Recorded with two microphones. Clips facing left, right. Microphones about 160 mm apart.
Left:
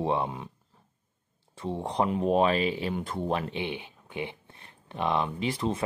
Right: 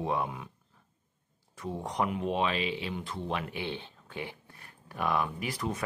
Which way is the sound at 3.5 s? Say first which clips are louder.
Left 3 dB; 15° left (ahead or behind).